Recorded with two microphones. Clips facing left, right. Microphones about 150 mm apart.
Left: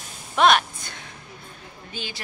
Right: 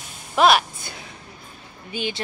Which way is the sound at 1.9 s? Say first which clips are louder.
Right 8 dB; 20° right (ahead or behind).